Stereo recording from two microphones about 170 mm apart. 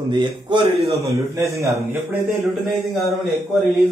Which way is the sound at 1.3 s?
15° right (ahead or behind).